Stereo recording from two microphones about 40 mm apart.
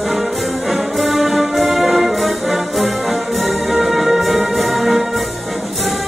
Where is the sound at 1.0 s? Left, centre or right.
Centre.